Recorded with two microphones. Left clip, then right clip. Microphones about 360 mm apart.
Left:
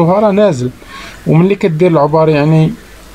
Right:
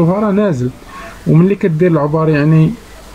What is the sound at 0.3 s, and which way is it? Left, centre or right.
Speech, centre.